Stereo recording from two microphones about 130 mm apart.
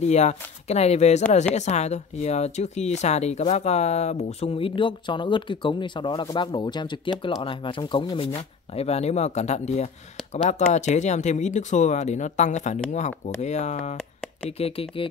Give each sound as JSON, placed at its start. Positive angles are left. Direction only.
{"t": 0.0, "sound": "speech", "side_deg": 60}
{"t": 8.4, "sound": "speech", "side_deg": 55}
{"t": 13.9, "sound": "a sound", "side_deg": 5}
{"t": 14.6, "sound": "speech", "side_deg": 45}